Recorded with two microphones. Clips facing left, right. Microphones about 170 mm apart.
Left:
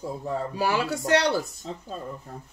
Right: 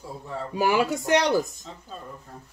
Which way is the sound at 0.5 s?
15° right (ahead or behind).